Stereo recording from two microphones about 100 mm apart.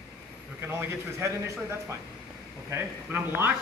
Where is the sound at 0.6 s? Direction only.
25° right (ahead or behind).